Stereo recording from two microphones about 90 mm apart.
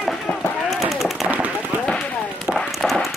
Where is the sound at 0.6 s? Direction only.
Centre (ahead or behind).